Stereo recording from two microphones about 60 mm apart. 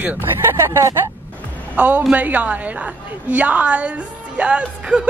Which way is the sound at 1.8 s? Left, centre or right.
Right.